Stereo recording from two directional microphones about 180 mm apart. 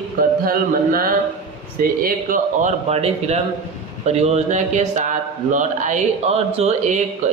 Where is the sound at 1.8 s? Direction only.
55° right (ahead or behind).